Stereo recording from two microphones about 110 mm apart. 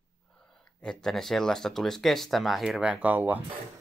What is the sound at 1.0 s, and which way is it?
Speech, 5° left (ahead or behind).